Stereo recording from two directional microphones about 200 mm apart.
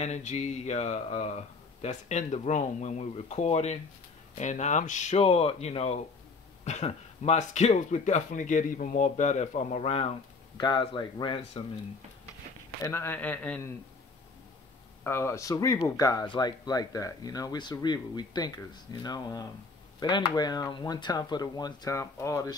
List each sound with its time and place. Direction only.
0.0 s speech: 35° left (ahead or behind)
12.8 s a man's voice: 10° left (ahead or behind)
15.0 s speech: 10° left (ahead or behind)